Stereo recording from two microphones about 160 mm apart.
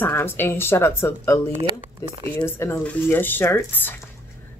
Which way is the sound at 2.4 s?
15° left (ahead or behind).